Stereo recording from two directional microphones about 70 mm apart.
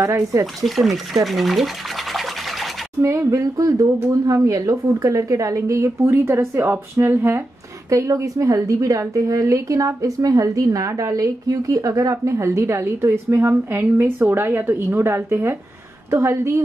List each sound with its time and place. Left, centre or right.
0.0 s a woman's voice: right
0.6 s speech: centre
3.0 s a woman's voice: right
6.0 s speech: right
7.9 s a woman's voice: right
16.1 s a woman's voice: right